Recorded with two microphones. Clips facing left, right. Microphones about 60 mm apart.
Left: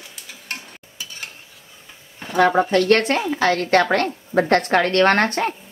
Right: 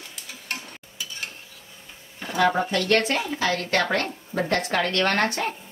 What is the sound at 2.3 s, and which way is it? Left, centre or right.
A woman's voice, left.